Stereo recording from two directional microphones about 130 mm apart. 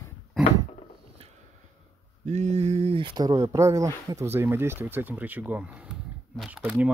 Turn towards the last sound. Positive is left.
turn(degrees=-10)  # may be behind; listen again after turning